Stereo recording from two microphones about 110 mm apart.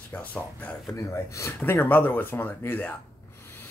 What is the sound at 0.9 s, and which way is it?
Speech, 30° left (ahead or behind).